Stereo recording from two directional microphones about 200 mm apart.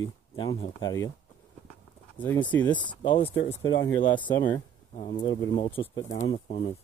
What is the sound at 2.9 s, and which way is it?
Speech, 25° left (ahead or behind).